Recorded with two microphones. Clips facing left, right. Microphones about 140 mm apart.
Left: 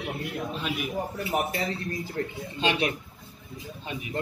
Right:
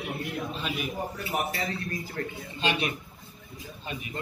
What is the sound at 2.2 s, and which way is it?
Speech, 25° left (ahead or behind).